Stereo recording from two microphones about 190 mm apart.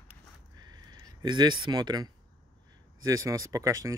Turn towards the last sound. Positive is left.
turn(degrees=-15)  # may be behind; listen again after turning